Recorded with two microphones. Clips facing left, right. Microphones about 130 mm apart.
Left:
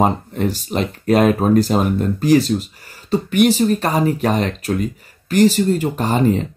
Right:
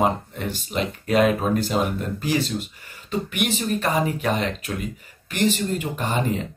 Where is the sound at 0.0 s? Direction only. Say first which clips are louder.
Left 5 dB; 35° left (ahead or behind).